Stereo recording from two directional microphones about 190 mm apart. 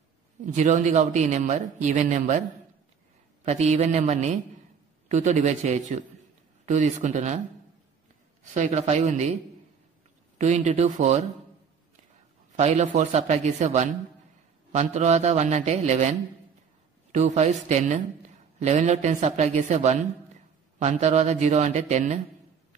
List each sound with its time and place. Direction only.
0.5 s a man's voice: 40° right (ahead or behind)
3.4 s a man's voice: 35° right (ahead or behind)
8.5 s a man's voice: 35° right (ahead or behind)
12.5 s a man's voice: 35° right (ahead or behind)